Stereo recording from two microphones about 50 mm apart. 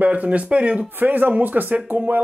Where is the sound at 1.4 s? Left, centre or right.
Right.